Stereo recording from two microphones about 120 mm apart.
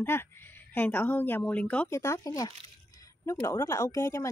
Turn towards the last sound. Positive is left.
turn(degrees=25)  # may be behind; listen again after turning